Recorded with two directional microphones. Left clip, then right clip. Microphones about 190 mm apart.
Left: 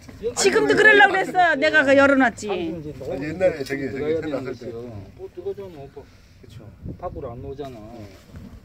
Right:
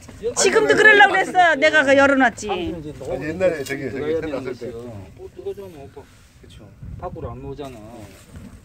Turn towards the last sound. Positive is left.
turn(degrees=-15)  # may be behind; listen again after turning